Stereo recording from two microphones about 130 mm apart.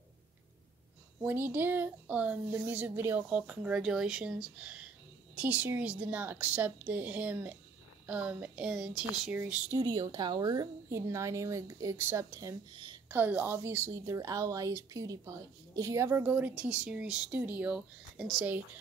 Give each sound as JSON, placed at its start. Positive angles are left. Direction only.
{"t": 1.2, "sound": "speech", "side_deg": -15}
{"t": 9.8, "sound": "a woman's voice", "side_deg": -30}
{"t": 13.1, "sound": "a woman's voice", "side_deg": -15}